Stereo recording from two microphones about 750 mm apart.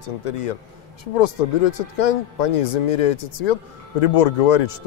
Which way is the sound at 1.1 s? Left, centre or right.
Left.